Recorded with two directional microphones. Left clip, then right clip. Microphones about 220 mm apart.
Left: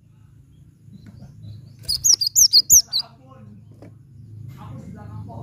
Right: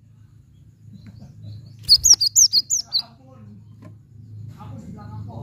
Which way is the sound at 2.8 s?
15° left (ahead or behind).